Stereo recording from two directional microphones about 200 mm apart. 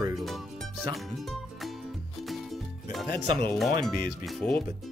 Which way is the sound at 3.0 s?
55° left (ahead or behind).